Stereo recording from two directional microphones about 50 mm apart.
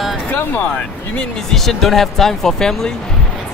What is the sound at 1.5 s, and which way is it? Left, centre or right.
Speech, centre.